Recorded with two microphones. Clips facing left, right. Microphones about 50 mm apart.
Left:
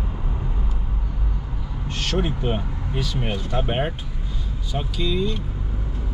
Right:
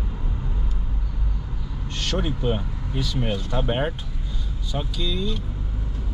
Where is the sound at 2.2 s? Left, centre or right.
Left.